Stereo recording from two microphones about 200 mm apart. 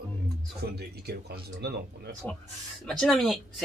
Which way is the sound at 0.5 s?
55° right (ahead or behind).